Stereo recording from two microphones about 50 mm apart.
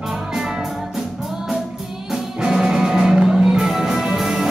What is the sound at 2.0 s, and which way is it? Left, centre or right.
Music, centre.